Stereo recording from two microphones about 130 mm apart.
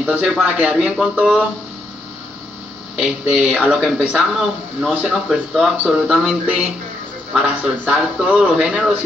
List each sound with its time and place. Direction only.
0.0 s speech: 5° right (ahead or behind)
3.0 s speech: 5° right (ahead or behind)